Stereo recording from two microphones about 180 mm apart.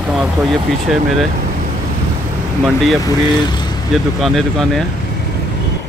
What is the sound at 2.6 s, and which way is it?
Speech, centre (ahead or behind).